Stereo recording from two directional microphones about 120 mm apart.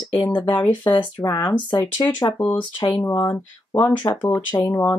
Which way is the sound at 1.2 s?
35° left (ahead or behind).